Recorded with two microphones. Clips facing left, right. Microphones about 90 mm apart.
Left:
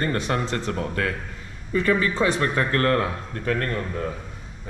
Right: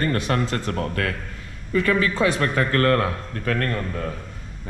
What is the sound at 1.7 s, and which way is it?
Speech, 25° left (ahead or behind).